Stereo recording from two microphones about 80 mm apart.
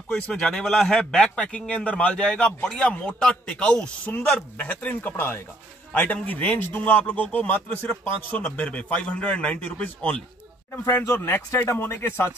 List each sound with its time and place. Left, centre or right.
0.1 s a man's voice: centre
10.7 s a man's voice: left